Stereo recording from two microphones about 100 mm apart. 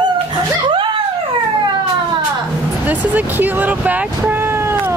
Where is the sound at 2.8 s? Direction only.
15° right (ahead or behind).